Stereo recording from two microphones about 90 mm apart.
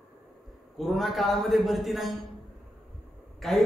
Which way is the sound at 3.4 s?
Centre (ahead or behind).